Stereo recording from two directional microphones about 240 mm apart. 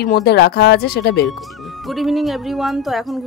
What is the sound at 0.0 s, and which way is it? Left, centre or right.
Speech, left.